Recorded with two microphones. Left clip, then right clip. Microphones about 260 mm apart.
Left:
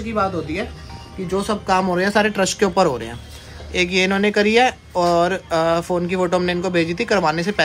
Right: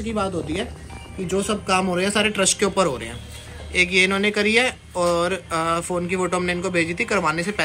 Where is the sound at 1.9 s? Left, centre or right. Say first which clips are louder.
Left 3 dB; left.